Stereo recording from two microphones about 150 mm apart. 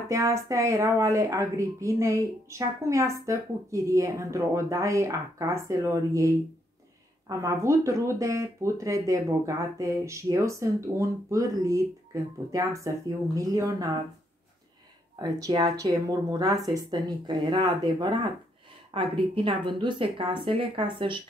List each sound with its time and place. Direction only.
0.1 s speech: 20° right (ahead or behind)
15.1 s a woman's voice: 25° right (ahead or behind)